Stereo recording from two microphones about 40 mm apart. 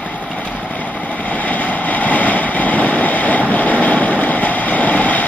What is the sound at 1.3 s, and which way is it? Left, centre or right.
Vehicle, left.